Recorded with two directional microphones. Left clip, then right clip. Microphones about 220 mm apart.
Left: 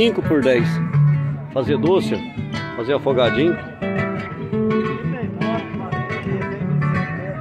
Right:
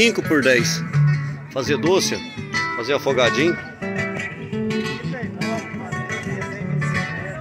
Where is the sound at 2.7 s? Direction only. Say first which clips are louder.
Left 3 dB; centre (ahead or behind).